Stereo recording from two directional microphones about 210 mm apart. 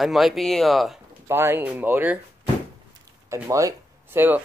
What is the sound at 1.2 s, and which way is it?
Speech, 10° right (ahead or behind).